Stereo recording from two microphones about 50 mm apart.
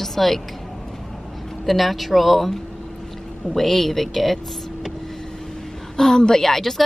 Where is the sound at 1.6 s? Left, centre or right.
Centre.